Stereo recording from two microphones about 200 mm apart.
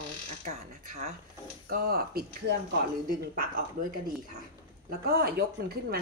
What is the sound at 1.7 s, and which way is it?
Speech, 50° right (ahead or behind).